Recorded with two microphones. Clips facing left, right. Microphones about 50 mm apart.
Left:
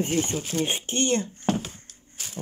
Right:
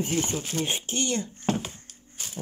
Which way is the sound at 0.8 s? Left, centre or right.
Left.